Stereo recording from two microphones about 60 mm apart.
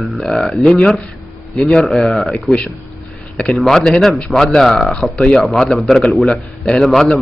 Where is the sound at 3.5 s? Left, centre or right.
Centre.